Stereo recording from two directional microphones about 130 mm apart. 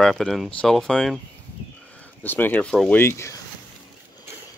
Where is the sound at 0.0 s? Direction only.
5° left (ahead or behind).